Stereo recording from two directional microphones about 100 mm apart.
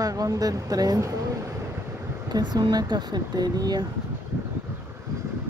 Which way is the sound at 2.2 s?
45° right (ahead or behind).